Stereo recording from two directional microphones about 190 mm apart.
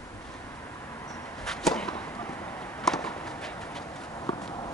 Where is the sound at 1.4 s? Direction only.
5° left (ahead or behind).